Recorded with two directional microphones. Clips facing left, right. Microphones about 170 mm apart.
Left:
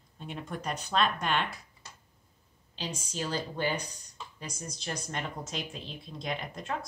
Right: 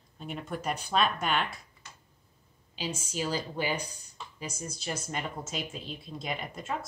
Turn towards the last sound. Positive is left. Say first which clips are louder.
# even
turn(degrees=-5)  # may be behind; listen again after turning